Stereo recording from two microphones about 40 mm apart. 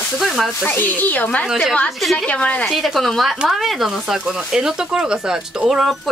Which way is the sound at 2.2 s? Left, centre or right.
Left.